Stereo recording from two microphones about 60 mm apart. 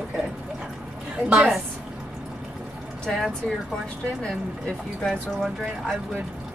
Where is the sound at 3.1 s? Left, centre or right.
Centre.